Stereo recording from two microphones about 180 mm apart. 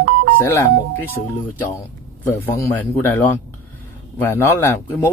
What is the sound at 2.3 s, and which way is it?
A man's voice, 10° left (ahead or behind).